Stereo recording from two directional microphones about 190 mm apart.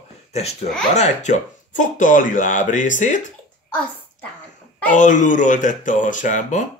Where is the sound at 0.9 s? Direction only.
35° left (ahead or behind).